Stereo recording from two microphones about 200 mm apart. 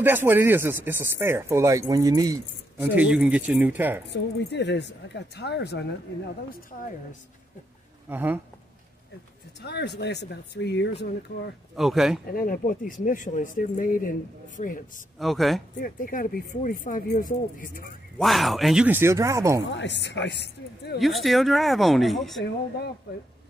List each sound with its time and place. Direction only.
0.0 s speech: 10° right (ahead or behind)
3.0 s speech: 5° right (ahead or behind)
4.1 s speech: 60° left (ahead or behind)
8.1 s speech: 10° right (ahead or behind)
9.6 s speech: 55° left (ahead or behind)
11.7 s speech: centre (ahead or behind)
12.3 s speech: 45° left (ahead or behind)
15.1 s speech: centre (ahead or behind)
15.8 s speech: 45° left (ahead or behind)
18.1 s speech: centre (ahead or behind); by 19.6 s 15° right (ahead or behind)
19.7 s speech: 60° left (ahead or behind)
21.0 s speech: centre (ahead or behind)